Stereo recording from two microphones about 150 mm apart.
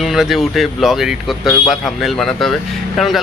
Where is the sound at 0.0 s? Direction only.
Centre (ahead or behind).